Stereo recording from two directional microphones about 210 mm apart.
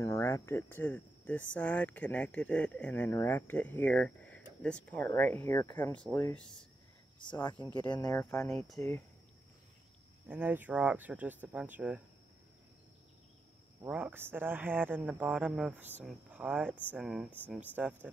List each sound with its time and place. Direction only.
0.0 s speech: 15° left (ahead or behind)
7.2 s speech: 20° left (ahead or behind)
8.2 s speech: 10° left (ahead or behind)
10.2 s speech: 10° right (ahead or behind)
13.7 s speech: 5° right (ahead or behind)